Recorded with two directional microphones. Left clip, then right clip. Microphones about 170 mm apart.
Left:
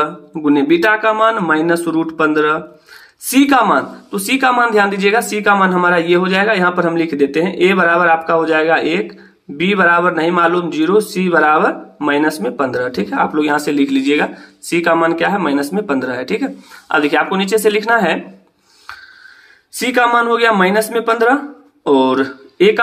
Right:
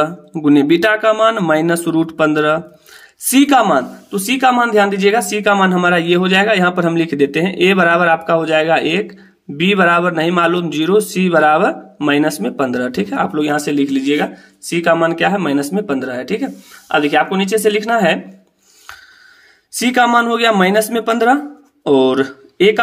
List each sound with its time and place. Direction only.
0.0 s speech: 50° right (ahead or behind)
19.8 s speech: 45° right (ahead or behind)